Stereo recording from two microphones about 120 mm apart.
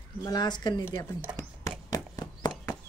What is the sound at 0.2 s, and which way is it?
Speech, 35° left (ahead or behind).